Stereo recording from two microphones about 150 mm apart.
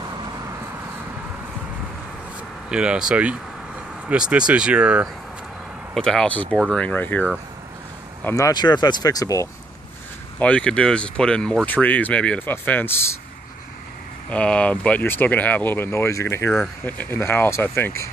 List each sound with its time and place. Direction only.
2.7 s speech: 5° right (ahead or behind)
5.9 s speech: 5° left (ahead or behind); by 9.5 s 20° left (ahead or behind)
10.4 s speech: 5° left (ahead or behind)
14.3 s speech: 5° left (ahead or behind)